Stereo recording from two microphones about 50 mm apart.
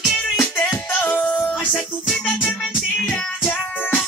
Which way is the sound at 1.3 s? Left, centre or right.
Left.